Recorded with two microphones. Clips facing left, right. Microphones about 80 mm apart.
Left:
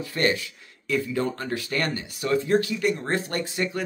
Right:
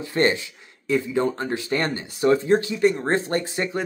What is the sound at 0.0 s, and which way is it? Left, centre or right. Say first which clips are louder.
Speech: right 3 dB; right.